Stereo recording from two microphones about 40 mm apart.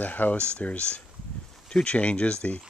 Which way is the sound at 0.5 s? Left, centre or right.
Left.